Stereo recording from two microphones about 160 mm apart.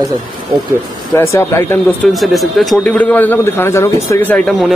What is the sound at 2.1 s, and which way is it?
Speech, centre (ahead or behind).